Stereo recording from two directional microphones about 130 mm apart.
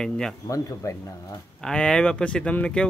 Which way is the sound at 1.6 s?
5° left (ahead or behind).